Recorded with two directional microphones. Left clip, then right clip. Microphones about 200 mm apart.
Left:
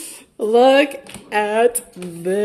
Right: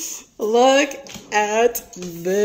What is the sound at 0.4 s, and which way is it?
Speech, 15° left (ahead or behind).